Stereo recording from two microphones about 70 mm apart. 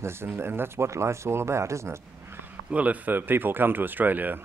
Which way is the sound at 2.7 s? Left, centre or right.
Right.